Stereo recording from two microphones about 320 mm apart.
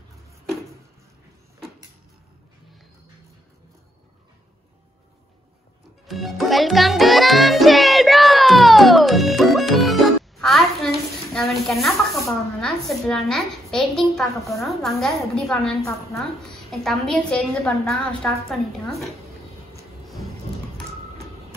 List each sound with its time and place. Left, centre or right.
6.0 s a child's voice: centre